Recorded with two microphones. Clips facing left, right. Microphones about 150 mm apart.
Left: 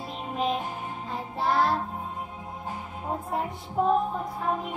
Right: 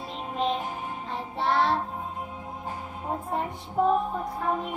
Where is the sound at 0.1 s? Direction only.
5° left (ahead or behind).